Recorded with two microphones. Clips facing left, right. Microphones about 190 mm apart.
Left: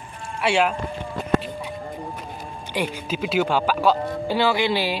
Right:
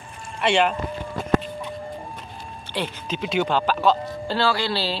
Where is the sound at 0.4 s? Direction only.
5° left (ahead or behind).